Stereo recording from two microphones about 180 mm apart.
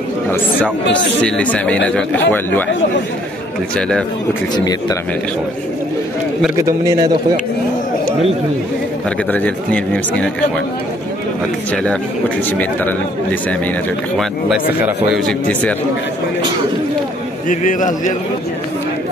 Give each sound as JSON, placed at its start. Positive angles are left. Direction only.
{"t": 1.2, "sound": "speech", "side_deg": 5}
{"t": 6.5, "sound": "a man's voice", "side_deg": -20}
{"t": 9.3, "sound": "speech", "side_deg": 10}
{"t": 11.7, "sound": "speech", "side_deg": 5}
{"t": 15.1, "sound": "speech", "side_deg": 5}
{"t": 17.5, "sound": "a man's voice", "side_deg": 45}